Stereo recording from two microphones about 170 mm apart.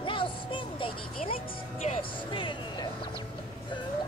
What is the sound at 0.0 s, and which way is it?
Music, 30° left (ahead or behind).